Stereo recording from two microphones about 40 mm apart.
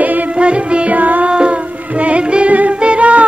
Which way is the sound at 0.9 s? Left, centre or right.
Right.